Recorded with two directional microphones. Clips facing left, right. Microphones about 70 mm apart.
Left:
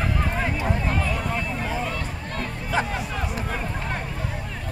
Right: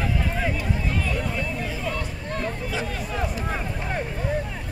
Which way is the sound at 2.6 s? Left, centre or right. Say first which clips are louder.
Left 3 dB; left.